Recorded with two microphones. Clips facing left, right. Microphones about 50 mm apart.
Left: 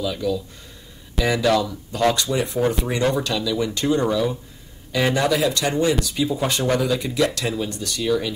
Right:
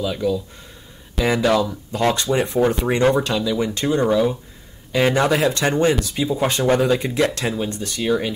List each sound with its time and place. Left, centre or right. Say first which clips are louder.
0.0 s speech: right 2 dB; right
1.4 s speech: right 1 dB; right